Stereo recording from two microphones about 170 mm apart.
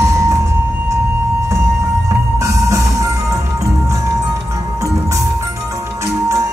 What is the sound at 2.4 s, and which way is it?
Music, 20° right (ahead or behind).